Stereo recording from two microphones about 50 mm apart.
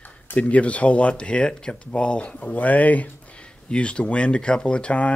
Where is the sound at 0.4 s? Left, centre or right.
Left.